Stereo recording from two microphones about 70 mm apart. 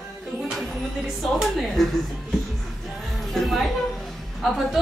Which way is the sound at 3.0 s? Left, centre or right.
Centre.